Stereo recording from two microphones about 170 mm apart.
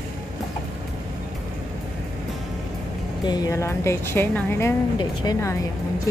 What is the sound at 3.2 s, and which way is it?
A woman's voice, 20° left (ahead or behind).